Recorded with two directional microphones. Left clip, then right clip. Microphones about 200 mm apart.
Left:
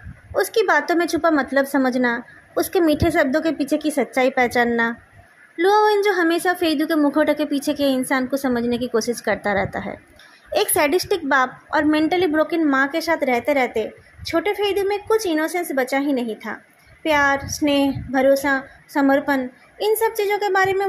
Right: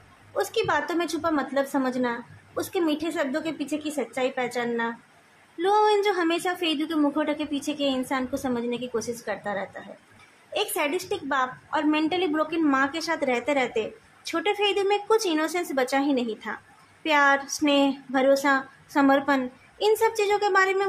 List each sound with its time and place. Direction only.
0.3 s a woman's voice: 25° left (ahead or behind)